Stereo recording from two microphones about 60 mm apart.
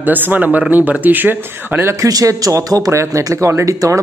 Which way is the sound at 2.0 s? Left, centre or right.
Right.